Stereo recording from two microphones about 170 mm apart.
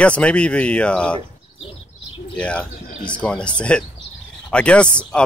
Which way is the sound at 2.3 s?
5° left (ahead or behind).